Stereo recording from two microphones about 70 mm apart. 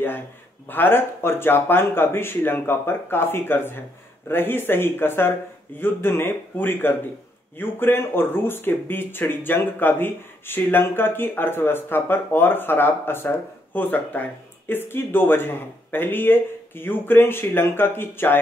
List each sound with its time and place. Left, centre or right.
0.7 s speech: left